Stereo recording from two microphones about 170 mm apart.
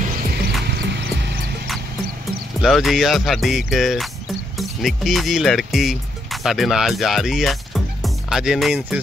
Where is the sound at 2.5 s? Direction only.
Centre (ahead or behind).